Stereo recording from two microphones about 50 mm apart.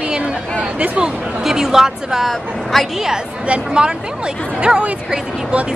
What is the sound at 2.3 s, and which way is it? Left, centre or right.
Speech, centre.